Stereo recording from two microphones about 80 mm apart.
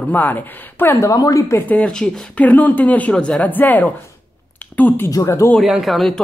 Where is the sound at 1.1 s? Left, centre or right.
Left.